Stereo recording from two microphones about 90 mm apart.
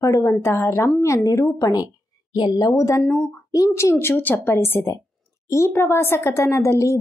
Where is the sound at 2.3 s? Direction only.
50° left (ahead or behind).